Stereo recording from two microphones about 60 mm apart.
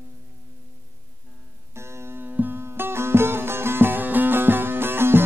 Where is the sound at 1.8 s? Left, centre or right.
Right.